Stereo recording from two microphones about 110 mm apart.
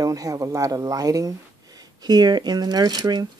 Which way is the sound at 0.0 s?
35° right (ahead or behind).